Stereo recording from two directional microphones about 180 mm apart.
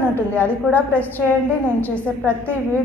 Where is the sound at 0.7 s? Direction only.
10° right (ahead or behind).